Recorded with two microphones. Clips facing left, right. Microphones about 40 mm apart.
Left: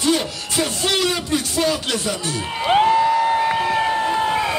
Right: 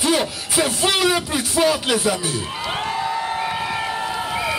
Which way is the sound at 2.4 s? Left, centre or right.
Centre.